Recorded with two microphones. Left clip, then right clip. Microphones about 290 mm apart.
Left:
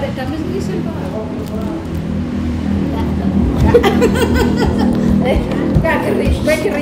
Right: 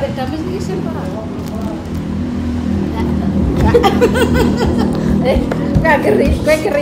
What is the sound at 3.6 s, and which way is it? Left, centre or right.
Speech, centre.